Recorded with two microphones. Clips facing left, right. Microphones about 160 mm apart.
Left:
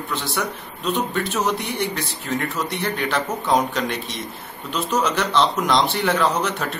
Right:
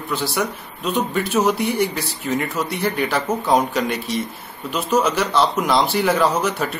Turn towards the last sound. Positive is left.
turn(degrees=-5)  # may be behind; listen again after turning